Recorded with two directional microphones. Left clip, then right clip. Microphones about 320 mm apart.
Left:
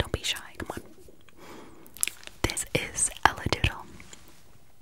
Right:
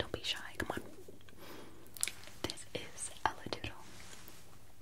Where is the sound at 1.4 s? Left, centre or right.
Left.